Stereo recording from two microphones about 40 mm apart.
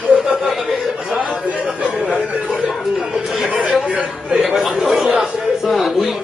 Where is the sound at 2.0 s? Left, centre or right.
Right.